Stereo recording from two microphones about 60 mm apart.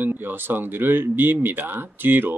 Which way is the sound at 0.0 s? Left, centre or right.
Right.